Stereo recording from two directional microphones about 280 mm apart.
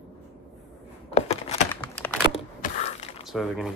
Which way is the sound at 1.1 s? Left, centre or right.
Left.